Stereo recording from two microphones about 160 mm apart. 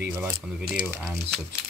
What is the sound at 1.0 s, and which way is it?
Speech, centre (ahead or behind).